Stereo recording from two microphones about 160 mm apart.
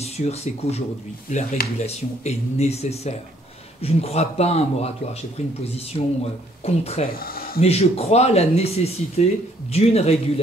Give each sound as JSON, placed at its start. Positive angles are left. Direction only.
{"t": 0.0, "sound": "speech", "side_deg": 40}
{"t": 1.3, "sound": "speech", "side_deg": 55}
{"t": 1.9, "sound": "speech", "side_deg": 45}
{"t": 5.9, "sound": "speech", "side_deg": 35}